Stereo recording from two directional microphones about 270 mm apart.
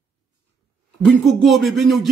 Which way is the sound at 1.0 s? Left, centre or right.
Centre.